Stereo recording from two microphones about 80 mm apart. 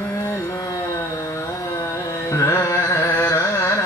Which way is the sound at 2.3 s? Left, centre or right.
Left.